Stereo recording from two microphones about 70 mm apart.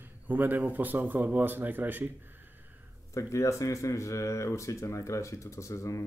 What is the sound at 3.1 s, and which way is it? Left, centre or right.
Speech, left.